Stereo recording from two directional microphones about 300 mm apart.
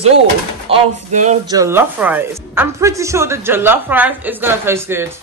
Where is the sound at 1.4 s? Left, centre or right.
Centre.